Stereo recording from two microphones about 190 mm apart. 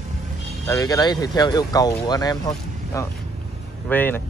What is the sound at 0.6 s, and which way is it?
Speech, 15° left (ahead or behind).